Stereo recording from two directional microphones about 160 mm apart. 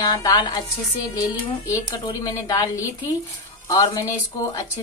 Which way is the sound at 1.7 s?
25° left (ahead or behind).